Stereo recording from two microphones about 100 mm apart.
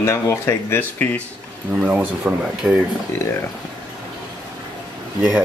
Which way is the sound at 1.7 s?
15° right (ahead or behind).